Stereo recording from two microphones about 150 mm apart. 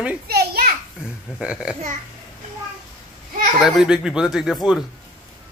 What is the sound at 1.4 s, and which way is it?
Speech, 5° right (ahead or behind).